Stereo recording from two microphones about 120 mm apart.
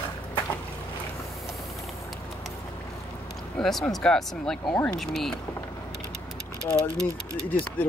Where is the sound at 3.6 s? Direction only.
Centre (ahead or behind).